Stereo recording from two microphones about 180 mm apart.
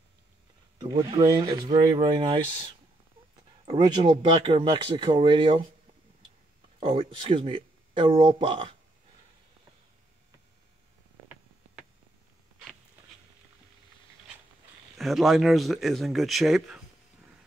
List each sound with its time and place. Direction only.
0.7 s speech: 25° right (ahead or behind)
3.8 s speech: 25° right (ahead or behind)
6.9 s speech: 30° right (ahead or behind)
15.0 s speech: centre (ahead or behind)